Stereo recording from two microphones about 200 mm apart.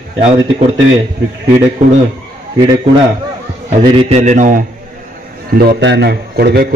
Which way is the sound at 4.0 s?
35° right (ahead or behind).